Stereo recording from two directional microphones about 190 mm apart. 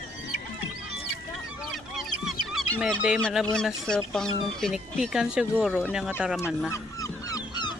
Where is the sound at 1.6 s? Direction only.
Centre (ahead or behind).